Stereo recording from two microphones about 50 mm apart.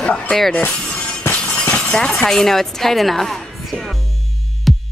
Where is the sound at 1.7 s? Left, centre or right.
Centre.